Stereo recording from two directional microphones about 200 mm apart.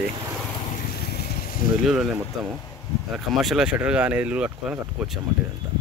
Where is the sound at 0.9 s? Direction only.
50° left (ahead or behind).